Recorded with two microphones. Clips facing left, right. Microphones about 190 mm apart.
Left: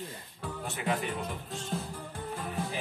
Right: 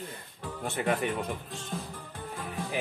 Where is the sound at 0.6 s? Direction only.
60° right (ahead or behind).